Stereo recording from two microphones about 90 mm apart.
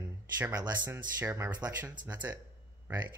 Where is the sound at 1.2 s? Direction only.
25° right (ahead or behind).